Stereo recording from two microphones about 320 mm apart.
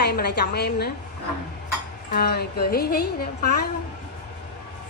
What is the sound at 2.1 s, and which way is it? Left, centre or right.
A woman's voice, left.